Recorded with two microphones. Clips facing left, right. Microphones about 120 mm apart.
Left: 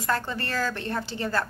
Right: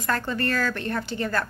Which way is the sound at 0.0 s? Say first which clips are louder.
Right 2 dB; 20° left (ahead or behind).